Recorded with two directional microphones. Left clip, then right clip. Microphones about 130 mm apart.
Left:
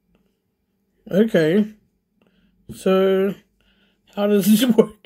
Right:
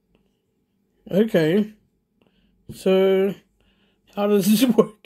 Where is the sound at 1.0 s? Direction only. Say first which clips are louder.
Left 2 dB; 20° right (ahead or behind).